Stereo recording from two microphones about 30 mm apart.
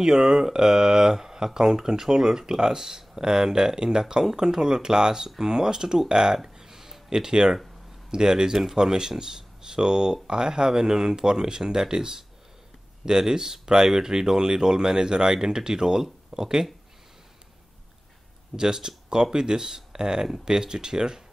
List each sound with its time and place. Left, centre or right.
0.0 s speech: centre
18.6 s speech: right